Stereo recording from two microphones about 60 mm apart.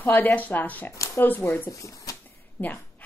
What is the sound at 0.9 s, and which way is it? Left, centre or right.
Speech, left.